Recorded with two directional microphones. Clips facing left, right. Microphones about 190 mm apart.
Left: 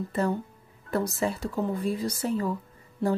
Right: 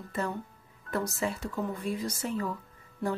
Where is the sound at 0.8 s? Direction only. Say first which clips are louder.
Left 4 dB; 35° left (ahead or behind).